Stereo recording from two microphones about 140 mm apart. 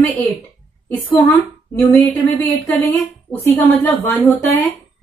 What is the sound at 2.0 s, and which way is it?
A woman's voice, 10° left (ahead or behind).